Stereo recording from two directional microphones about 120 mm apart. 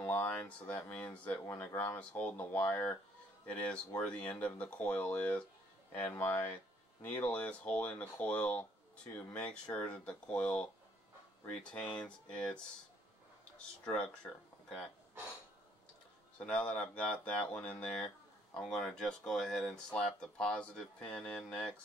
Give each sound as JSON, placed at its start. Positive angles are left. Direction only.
{"t": 0.0, "sound": "speech", "side_deg": 15}
{"t": 1.4, "sound": "speech", "side_deg": 25}
{"t": 13.8, "sound": "speech", "side_deg": 10}
{"t": 16.3, "sound": "speech", "side_deg": 10}